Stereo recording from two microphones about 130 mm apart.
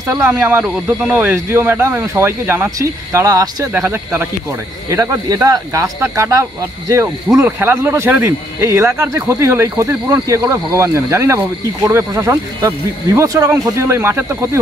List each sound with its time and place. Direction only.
0.1 s speech: 15° right (ahead or behind)
3.7 s speech: 15° right (ahead or behind)